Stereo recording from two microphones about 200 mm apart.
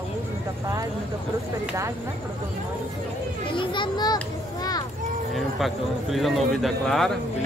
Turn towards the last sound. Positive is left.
turn(degrees=0)  # may be behind; listen again after turning